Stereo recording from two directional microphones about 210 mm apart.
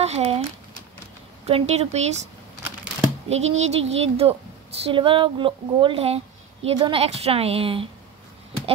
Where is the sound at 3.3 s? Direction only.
30° right (ahead or behind).